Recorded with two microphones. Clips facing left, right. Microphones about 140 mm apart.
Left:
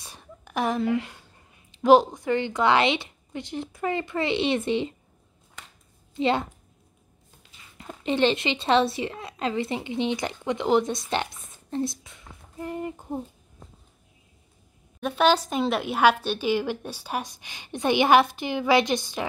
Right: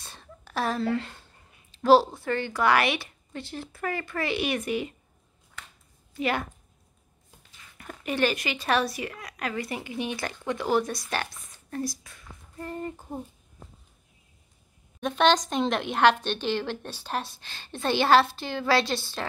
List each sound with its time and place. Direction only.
0.0 s a sound: 15° left (ahead or behind)
1.7 s a woman's voice: 15° left (ahead or behind)
6.1 s a woman's voice: 25° left (ahead or behind)
7.7 s a woman's voice: 20° left (ahead or behind)
15.0 s a woman's voice: 5° left (ahead or behind)